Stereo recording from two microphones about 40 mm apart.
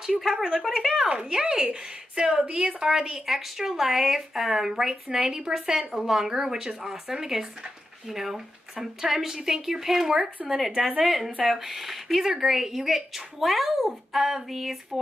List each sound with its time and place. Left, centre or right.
0.2 s speech: centre
1.0 s a woman's voice: right
2.8 s a woman's voice: centre
3.3 s speech: centre